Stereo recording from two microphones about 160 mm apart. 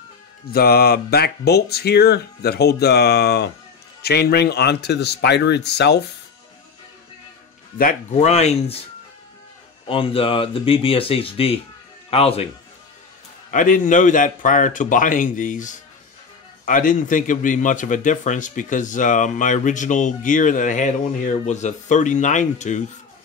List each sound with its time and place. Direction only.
0.5 s speech: 75° left (ahead or behind); by 6.0 s 90° left
8.1 s a man's voice: 45° left (ahead or behind)
9.8 s speech: 35° left (ahead or behind)
13.5 s a man's voice: 55° left (ahead or behind)